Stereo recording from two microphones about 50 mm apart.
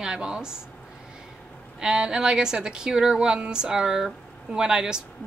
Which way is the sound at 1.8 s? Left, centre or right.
Centre.